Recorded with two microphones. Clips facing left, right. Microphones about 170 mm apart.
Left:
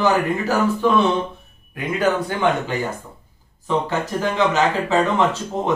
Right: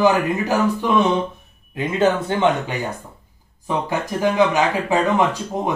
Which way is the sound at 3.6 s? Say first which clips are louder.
Left 1 dB; 15° right (ahead or behind).